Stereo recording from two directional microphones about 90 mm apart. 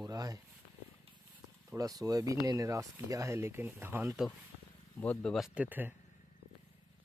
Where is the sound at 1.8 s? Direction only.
40° right (ahead or behind); by 4.1 s 25° right (ahead or behind).